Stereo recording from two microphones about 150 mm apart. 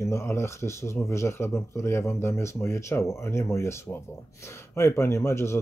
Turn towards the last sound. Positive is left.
turn(degrees=15)  # may be behind; listen again after turning